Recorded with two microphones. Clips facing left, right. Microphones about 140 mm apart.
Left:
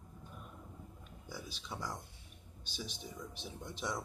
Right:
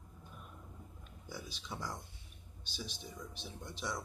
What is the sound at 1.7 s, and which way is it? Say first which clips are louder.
Speech: even; 10° left (ahead or behind).